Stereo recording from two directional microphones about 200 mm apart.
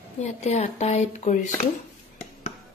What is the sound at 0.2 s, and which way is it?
Speech, 35° left (ahead or behind).